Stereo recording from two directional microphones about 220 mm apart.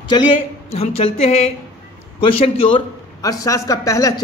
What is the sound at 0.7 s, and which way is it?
A woman's voice, 25° left (ahead or behind).